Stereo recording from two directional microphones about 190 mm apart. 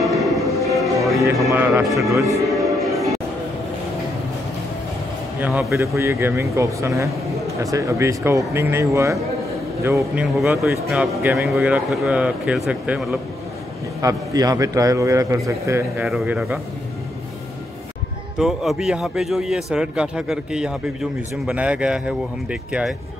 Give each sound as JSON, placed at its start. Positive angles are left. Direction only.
{"t": 0.0, "sound": "music", "side_deg": 0}
{"t": 1.5, "sound": "speech", "side_deg": -15}
{"t": 2.4, "sound": "music", "side_deg": 0}
{"t": 5.4, "sound": "a man's voice", "side_deg": -10}
{"t": 14.0, "sound": "speech", "side_deg": -20}
{"t": 16.1, "sound": "a man's voice", "side_deg": -5}
{"t": 18.4, "sound": "a man's voice", "side_deg": 0}